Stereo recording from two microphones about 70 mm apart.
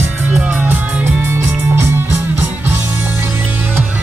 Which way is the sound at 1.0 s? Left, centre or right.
Right.